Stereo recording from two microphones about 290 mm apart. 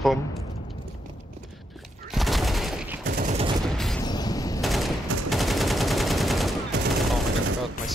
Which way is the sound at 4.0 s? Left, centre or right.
Centre.